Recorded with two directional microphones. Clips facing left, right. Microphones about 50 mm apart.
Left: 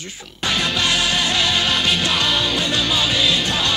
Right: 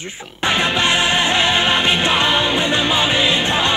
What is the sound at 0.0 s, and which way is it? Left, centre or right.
Music, right.